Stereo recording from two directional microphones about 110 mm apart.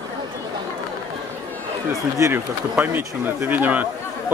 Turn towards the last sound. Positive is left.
turn(degrees=-15)  # may be behind; listen again after turning